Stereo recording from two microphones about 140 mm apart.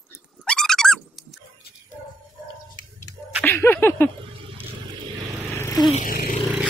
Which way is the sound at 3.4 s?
15° left (ahead or behind).